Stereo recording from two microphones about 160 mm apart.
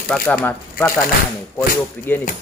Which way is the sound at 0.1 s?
10° left (ahead or behind).